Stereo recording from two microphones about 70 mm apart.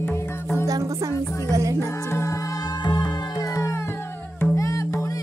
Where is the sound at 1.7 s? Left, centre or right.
Left.